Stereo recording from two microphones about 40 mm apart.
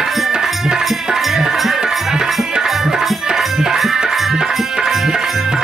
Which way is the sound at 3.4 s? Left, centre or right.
Centre.